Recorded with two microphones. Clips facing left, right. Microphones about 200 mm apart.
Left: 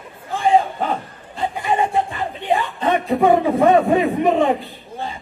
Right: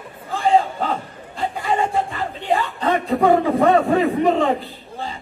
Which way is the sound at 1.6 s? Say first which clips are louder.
Left 1 dB; 20° left (ahead or behind).